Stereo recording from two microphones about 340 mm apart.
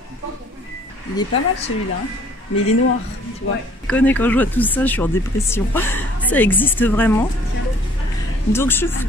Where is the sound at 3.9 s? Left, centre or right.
Centre.